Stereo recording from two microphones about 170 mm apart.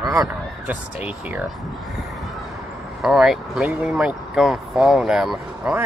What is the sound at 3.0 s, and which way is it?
Speech, 5° right (ahead or behind).